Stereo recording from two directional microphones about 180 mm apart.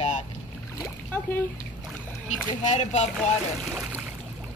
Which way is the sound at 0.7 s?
15° left (ahead or behind).